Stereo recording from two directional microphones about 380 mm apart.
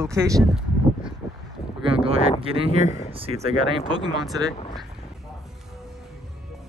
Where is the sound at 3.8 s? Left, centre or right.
Centre.